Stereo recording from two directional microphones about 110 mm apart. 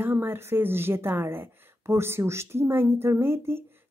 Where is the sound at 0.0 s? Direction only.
20° right (ahead or behind).